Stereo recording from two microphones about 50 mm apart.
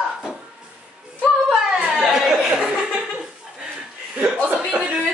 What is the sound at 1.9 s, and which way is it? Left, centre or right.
Speech, centre.